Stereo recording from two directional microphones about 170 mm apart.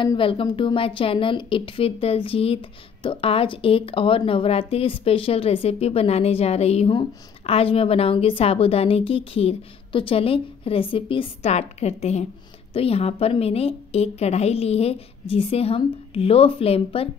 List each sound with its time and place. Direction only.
0.0 s a woman's voice: 30° left (ahead or behind)